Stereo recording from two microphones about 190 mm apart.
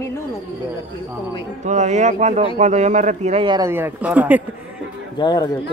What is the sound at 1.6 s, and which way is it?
Speech, 40° right (ahead or behind).